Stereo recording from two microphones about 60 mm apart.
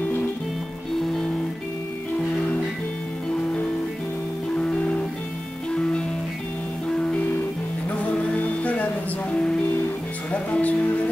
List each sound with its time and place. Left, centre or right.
4.6 s music: centre
10.3 s music: left